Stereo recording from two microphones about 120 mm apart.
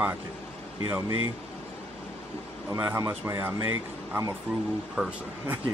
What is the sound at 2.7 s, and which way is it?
Speech, 25° right (ahead or behind).